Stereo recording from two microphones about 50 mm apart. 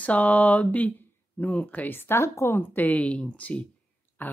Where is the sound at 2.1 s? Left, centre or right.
Left.